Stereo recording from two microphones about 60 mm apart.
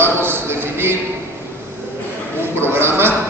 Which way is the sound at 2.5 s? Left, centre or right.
Right.